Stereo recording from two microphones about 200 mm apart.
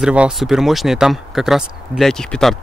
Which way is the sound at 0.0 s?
5° right (ahead or behind).